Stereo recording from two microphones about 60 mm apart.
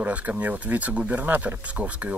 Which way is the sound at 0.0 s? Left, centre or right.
Right.